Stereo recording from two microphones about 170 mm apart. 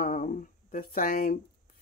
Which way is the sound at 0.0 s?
50° left (ahead or behind).